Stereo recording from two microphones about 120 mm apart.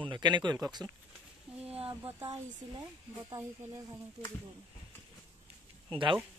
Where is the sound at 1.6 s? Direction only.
55° right (ahead or behind).